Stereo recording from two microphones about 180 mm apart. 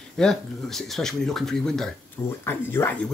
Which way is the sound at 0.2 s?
Centre (ahead or behind).